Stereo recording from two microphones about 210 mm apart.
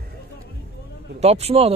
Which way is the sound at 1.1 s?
30° right (ahead or behind).